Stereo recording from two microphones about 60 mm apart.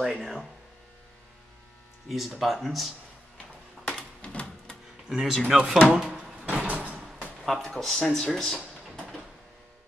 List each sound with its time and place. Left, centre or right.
0.0 s speech: centre
2.0 s speech: centre
3.3 s a sound: centre
5.1 s speech: centre
6.5 s door: centre
7.4 s speech: centre
8.8 s a sound: centre